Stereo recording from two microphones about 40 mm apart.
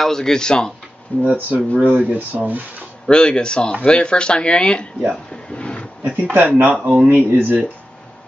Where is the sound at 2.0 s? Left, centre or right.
Right.